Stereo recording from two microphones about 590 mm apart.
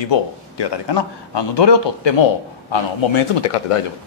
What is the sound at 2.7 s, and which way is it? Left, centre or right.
Speech, left.